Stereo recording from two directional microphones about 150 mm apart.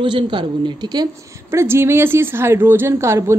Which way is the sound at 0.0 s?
35° right (ahead or behind).